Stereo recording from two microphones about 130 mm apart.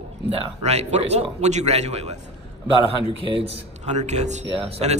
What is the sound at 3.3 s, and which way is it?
Speech, 55° right (ahead or behind).